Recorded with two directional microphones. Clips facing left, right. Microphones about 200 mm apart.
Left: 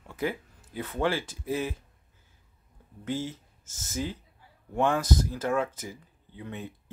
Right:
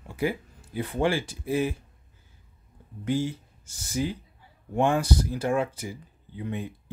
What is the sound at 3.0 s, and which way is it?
Speech, 15° right (ahead or behind).